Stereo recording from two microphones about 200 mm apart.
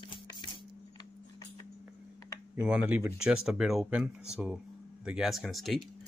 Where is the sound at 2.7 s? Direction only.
5° right (ahead or behind).